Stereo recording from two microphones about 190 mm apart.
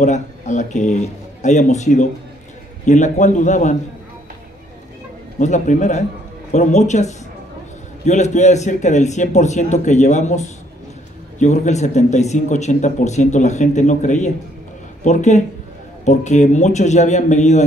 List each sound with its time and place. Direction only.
0.0 s speech: 40° left (ahead or behind)
5.4 s speech: 40° left (ahead or behind)